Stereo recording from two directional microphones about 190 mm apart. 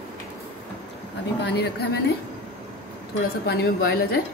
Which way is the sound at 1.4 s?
60° left (ahead or behind).